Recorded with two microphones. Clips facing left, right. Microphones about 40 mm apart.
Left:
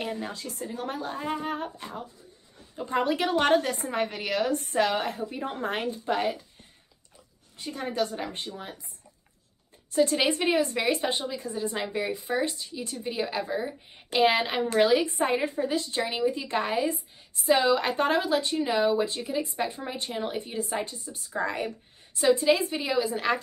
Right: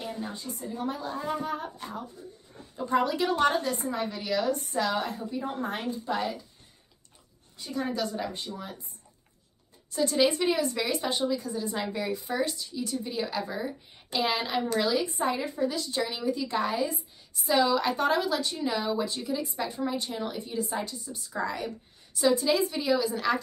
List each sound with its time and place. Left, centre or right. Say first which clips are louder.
0.0 s a woman's voice: left 3 dB; left
7.5 s speech: left 1 dB; left
9.9 s speech: left 1 dB; left
14.1 s speech: left 5 dB; left